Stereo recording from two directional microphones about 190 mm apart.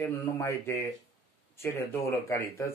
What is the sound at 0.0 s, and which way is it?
Speech, 15° left (ahead or behind).